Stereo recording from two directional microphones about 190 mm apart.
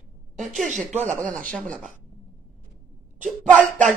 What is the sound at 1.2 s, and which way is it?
Speech, 5° left (ahead or behind).